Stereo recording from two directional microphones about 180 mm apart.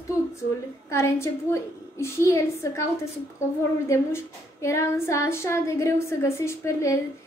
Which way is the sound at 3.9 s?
15° left (ahead or behind).